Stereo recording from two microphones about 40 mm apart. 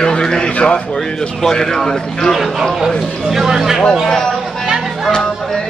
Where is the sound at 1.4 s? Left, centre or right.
Centre.